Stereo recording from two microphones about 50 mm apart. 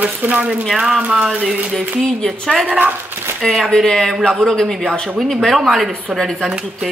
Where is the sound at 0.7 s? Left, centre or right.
Centre.